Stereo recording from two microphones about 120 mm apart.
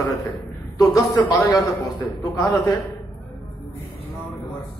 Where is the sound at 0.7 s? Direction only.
30° left (ahead or behind).